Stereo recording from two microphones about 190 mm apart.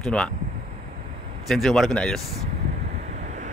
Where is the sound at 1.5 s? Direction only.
Centre (ahead or behind).